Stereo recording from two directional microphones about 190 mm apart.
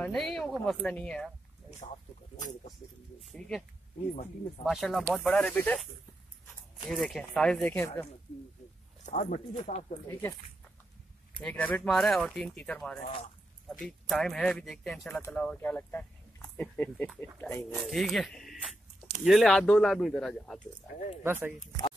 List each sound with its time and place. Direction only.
0.0 s speech: centre (ahead or behind)
3.2 s speech: centre (ahead or behind)
4.6 s speech: centre (ahead or behind)
6.9 s speech: centre (ahead or behind)
9.0 s speech: 40° left (ahead or behind)
11.4 s speech: 5° left (ahead or behind)
21.2 s speech: 10° right (ahead or behind)